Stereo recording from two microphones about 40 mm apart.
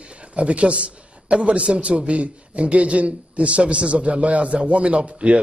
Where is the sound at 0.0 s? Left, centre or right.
Right.